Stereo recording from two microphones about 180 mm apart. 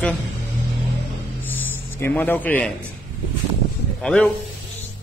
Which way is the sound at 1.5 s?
10° left (ahead or behind).